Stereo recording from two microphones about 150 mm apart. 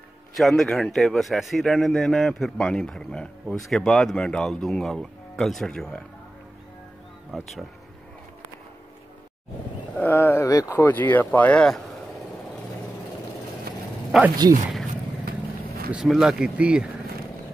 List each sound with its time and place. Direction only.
0.3 s speech: centre (ahead or behind)
7.3 s speech: centre (ahead or behind)
9.9 s speech: 10° left (ahead or behind)
14.1 s speech: centre (ahead or behind)
15.2 s vehicle: 90° right
15.9 s speech: 5° right (ahead or behind)